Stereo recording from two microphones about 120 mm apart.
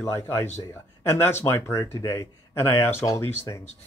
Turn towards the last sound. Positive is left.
turn(degrees=25)  # may be behind; listen again after turning